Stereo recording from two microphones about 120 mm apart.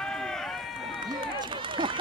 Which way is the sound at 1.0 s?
40° right (ahead or behind).